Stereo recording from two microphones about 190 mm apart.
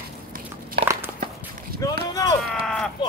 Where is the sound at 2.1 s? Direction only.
20° left (ahead or behind).